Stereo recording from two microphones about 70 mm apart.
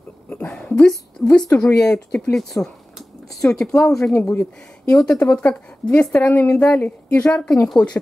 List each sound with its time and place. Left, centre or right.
0.7 s a woman's voice: centre
4.1 s speech: left
4.9 s a woman's voice: centre
6.3 s a woman's voice: left
6.6 s a woman's voice: centre